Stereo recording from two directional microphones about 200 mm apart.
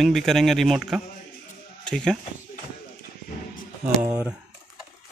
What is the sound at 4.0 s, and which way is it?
Speech, 15° right (ahead or behind).